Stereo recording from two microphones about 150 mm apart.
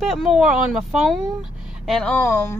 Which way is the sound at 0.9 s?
Centre (ahead or behind).